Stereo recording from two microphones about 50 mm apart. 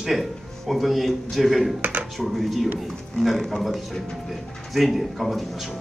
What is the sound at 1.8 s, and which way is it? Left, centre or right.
Speech, right.